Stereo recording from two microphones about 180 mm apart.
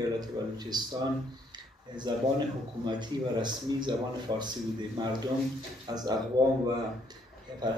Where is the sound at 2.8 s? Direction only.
25° right (ahead or behind).